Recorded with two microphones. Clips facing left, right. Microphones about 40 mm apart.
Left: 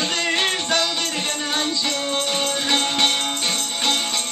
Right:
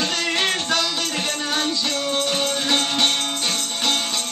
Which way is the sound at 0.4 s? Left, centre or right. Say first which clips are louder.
Even; left.